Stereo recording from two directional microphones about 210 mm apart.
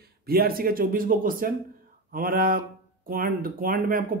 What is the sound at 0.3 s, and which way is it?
Speech, 45° right (ahead or behind).